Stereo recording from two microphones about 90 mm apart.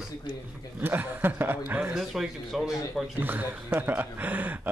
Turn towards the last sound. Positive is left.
turn(degrees=-20)  # may be behind; listen again after turning